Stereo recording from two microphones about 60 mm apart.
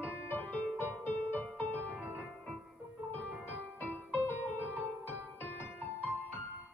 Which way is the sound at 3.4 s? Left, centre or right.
Left.